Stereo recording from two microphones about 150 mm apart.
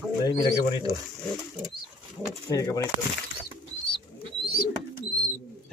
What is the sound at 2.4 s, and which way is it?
Speech, 25° left (ahead or behind).